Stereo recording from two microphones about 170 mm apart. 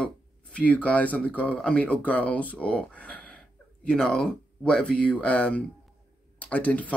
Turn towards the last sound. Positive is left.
turn(degrees=10)  # may be behind; listen again after turning